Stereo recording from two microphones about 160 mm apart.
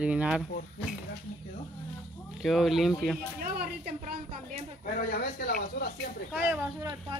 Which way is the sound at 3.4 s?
65° right (ahead or behind).